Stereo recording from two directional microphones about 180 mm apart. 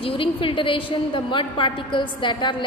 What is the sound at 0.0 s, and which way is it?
A woman's voice, 30° left (ahead or behind).